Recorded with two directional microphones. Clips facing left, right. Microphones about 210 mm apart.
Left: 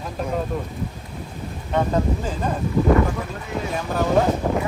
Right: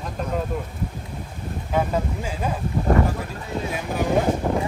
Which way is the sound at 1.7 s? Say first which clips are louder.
Left 2 dB; 10° right (ahead or behind).